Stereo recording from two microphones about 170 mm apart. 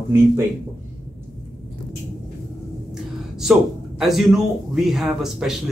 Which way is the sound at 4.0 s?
Centre (ahead or behind).